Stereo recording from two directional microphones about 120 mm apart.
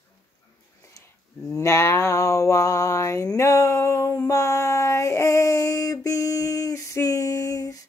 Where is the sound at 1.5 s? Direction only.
25° left (ahead or behind).